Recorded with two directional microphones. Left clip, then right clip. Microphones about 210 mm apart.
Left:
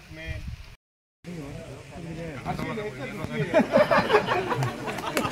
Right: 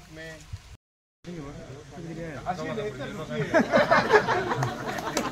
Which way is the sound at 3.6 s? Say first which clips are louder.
Left 1 dB; 45° left (ahead or behind).